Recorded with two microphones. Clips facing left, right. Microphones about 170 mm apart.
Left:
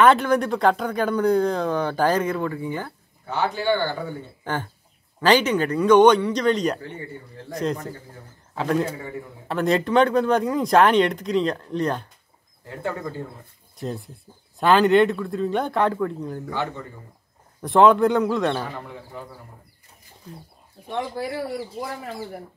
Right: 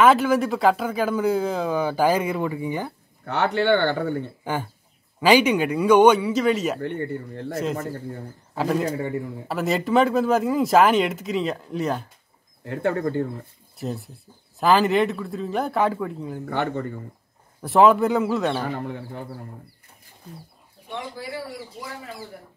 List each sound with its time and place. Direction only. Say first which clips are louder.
0.0 s speech: even; 5° right (ahead or behind)
3.3 s speech: right 3 dB; 65° right (ahead or behind)
4.5 s speech: left 4 dB; 10° right (ahead or behind)
6.8 s speech: right 8 dB; 60° right (ahead or behind)
7.5 s speech: left 1 dB; 5° right (ahead or behind)
12.6 s speech: right 6 dB; 65° right (ahead or behind)
13.7 s speech: even; centre (ahead or behind)
16.4 s speech: right 6 dB; 60° right (ahead or behind)
17.6 s speech: left 1 dB; 5° right (ahead or behind)
20.9 s speech: left 5 dB; 55° left (ahead or behind)